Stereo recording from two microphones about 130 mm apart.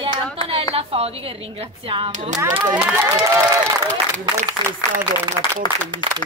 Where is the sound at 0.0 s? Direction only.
45° right (ahead or behind).